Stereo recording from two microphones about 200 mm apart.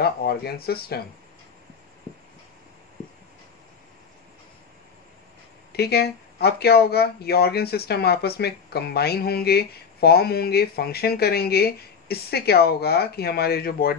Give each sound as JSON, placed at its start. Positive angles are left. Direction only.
{"t": 0.0, "sound": "speech", "side_deg": 50}
{"t": 5.7, "sound": "speech", "side_deg": 55}